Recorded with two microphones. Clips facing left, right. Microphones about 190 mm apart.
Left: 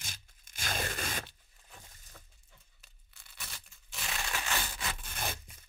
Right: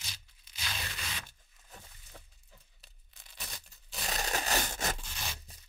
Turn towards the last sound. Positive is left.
turn(degrees=55)  # may be behind; listen again after turning